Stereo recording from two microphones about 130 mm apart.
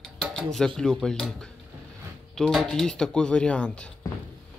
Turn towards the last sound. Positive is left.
turn(degrees=10)  # may be behind; listen again after turning